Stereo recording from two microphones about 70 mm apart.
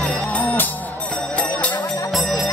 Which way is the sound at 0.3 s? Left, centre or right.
Left.